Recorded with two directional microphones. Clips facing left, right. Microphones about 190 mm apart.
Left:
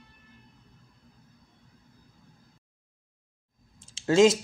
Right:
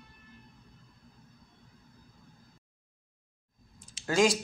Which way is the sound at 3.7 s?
25° left (ahead or behind).